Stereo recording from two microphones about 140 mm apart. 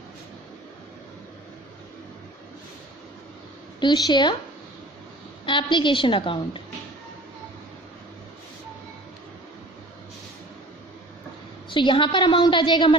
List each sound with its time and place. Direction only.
3.8 s a woman's voice: 30° left (ahead or behind)
5.4 s a woman's voice: 35° left (ahead or behind)
11.7 s a woman's voice: 35° left (ahead or behind)